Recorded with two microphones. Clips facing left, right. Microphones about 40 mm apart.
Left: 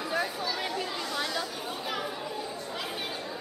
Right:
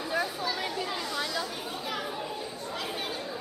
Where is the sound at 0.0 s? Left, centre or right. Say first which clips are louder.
Even; centre.